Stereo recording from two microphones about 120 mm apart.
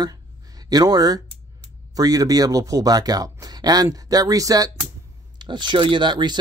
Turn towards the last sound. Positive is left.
turn(degrees=-40)  # may be behind; listen again after turning